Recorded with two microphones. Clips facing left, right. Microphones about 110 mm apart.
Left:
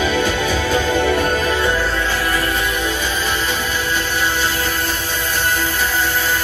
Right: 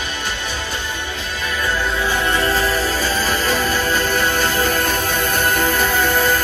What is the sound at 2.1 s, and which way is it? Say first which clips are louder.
Music: right 1 dB; 25° right (ahead or behind).